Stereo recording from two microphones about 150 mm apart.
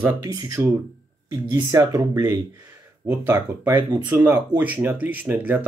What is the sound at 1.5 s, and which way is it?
Speech, 20° right (ahead or behind).